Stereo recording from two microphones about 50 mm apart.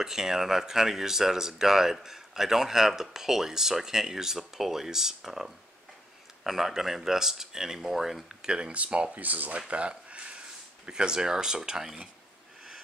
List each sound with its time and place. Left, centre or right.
0.0 s speech: centre
8.3 s speech: centre; by 9.6 s right
9.7 s a sound: right
10.9 s speech: centre